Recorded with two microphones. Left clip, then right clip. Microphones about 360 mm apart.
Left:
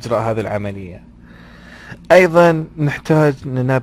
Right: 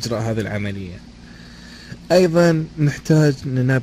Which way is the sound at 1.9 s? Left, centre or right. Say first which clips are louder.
Left 5 dB; centre.